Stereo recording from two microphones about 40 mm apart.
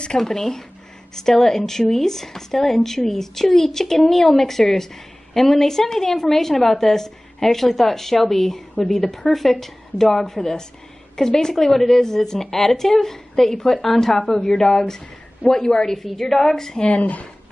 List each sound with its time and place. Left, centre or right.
0.2 s a woman's voice: centre
16.8 s speech: left